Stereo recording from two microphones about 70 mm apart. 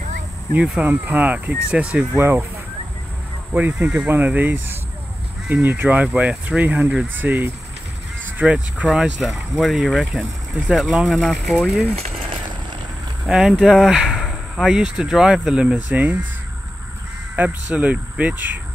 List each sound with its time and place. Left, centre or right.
0.8 s speech: right
1.7 s speech: centre
2.1 s speech: right
3.8 s speech: centre
8.8 s speech: centre
13.3 s speech: centre
15.9 s speech: right
17.4 s speech: right